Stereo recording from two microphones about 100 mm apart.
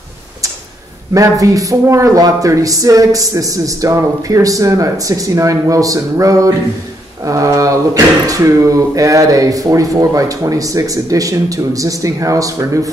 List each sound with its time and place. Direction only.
1.1 s speech: 35° right (ahead or behind)